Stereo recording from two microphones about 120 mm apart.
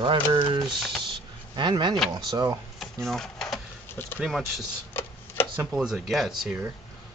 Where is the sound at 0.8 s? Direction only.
Centre (ahead or behind).